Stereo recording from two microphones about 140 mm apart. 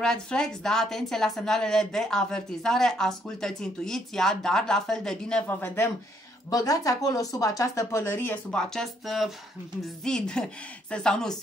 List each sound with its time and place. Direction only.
0.0 s a woman's voice: 5° left (ahead or behind)
6.5 s a woman's voice: 25° left (ahead or behind); by 11.3 s 5° left (ahead or behind)